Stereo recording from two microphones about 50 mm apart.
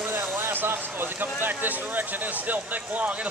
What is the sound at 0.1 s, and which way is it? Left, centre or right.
Speech, right.